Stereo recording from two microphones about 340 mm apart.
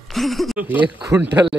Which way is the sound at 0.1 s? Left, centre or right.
Centre.